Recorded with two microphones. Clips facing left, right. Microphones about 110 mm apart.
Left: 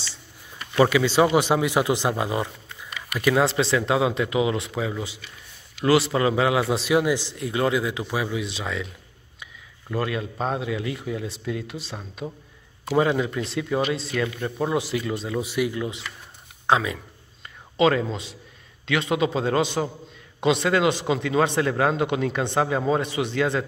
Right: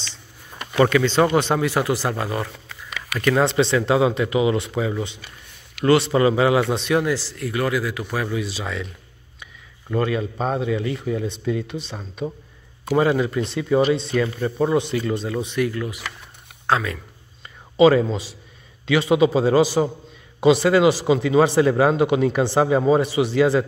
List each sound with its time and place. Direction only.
0.7 s a man's voice: 10° left (ahead or behind)
2.5 s a sound: 90° right
3.2 s a man's voice: 5° left (ahead or behind); by 8.2 s 20° left (ahead or behind)
8.2 s a man's voice: centre (ahead or behind)
17.7 s a man's voice: 5° right (ahead or behind)